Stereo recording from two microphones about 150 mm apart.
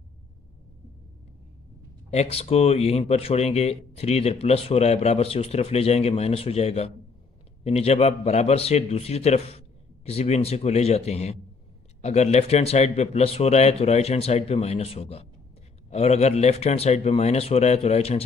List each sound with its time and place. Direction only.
2.0 s speech: 45° left (ahead or behind)